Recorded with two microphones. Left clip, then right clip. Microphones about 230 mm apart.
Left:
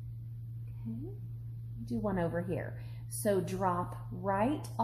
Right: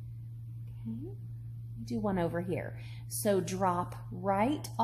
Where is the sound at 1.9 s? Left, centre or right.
Right.